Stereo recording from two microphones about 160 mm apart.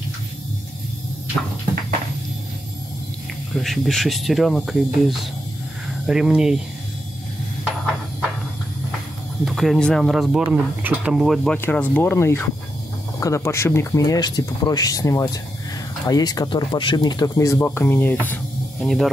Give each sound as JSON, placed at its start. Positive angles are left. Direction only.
{"t": 3.6, "sound": "speech", "side_deg": 0}
{"t": 9.4, "sound": "speech", "side_deg": 0}
{"t": 10.5, "sound": "speech", "side_deg": -10}
{"t": 11.5, "sound": "speech", "side_deg": 10}